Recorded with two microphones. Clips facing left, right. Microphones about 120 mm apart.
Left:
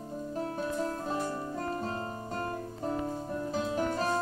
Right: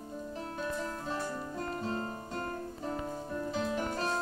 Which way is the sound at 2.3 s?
35° left (ahead or behind).